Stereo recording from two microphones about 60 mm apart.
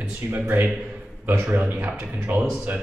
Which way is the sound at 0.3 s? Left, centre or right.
Right.